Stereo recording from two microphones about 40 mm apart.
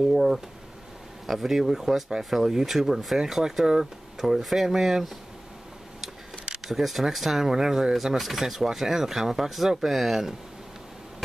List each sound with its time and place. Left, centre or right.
0.1 s speech: centre
6.5 s speech: centre